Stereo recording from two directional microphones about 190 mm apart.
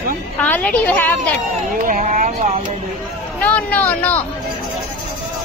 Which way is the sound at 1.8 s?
40° right (ahead or behind).